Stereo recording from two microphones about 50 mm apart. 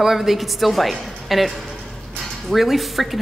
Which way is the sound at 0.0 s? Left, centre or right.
Centre.